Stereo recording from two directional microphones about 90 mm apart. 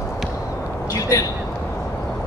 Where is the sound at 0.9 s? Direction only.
40° left (ahead or behind).